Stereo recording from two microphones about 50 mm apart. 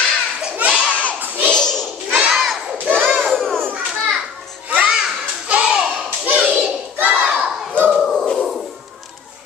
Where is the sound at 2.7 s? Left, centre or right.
Right.